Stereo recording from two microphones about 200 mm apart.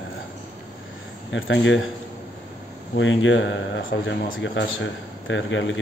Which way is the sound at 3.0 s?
70° left (ahead or behind).